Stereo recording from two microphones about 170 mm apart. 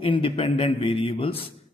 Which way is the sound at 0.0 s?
30° left (ahead or behind).